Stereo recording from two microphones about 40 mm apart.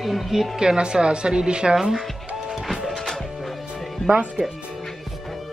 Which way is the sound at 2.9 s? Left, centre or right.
Centre.